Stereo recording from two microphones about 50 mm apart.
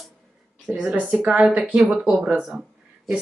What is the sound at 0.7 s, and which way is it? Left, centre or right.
Speech, right.